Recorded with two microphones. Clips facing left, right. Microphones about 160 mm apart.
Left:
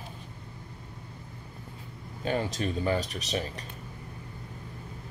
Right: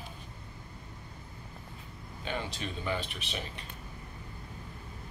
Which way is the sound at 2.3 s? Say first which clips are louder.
Left 7 dB; 45° left (ahead or behind).